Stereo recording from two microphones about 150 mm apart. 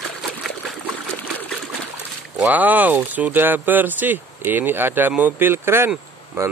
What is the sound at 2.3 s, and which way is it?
Speech, 10° right (ahead or behind).